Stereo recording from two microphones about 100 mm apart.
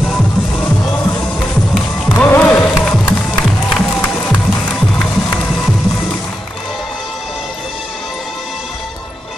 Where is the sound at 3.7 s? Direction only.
15° left (ahead or behind).